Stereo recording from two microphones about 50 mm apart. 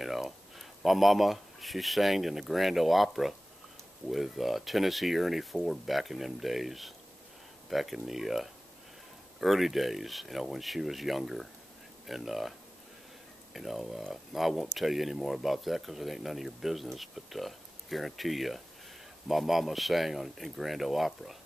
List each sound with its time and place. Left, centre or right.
0.0 s speech: centre